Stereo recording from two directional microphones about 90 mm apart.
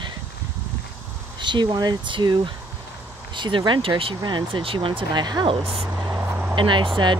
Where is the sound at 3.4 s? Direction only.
60° right (ahead or behind); by 4.1 s 85° right.